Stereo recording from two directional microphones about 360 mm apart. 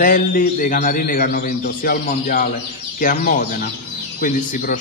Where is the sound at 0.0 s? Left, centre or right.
Left.